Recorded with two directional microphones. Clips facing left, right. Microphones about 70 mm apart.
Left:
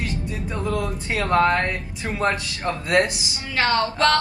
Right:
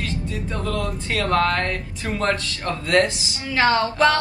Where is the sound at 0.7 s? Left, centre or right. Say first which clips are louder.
Left 1 dB; left.